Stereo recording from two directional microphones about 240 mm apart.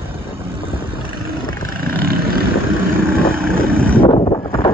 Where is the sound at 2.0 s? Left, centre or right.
Right.